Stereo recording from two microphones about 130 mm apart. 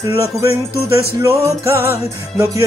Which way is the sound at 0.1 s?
20° right (ahead or behind).